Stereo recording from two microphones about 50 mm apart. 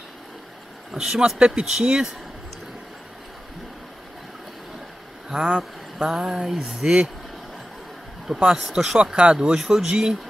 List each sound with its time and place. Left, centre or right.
0.9 s speech: centre
5.3 s speech: centre
8.5 s speech: centre
9.1 s speech: right